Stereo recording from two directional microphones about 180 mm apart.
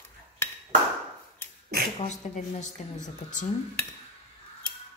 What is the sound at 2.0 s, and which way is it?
A woman's voice, 40° left (ahead or behind).